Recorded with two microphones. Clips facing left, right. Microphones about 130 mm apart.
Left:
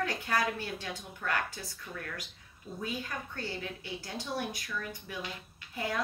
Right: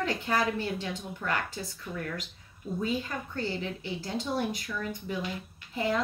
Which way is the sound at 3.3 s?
25° right (ahead or behind).